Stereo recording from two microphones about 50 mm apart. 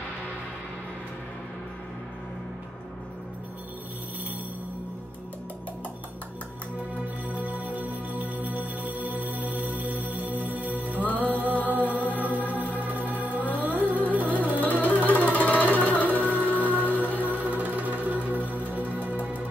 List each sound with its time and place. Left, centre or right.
7.2 s music: right
14.6 s music: left
17.3 s music: right
18.5 s music: left